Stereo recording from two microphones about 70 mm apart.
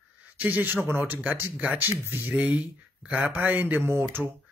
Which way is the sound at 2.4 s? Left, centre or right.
Centre.